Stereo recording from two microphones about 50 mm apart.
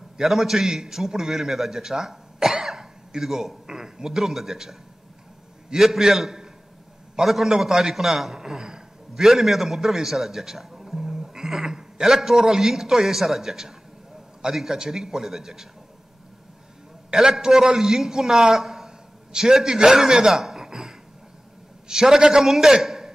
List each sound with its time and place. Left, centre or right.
0.2 s a man's voice: centre
17.1 s a man's voice: centre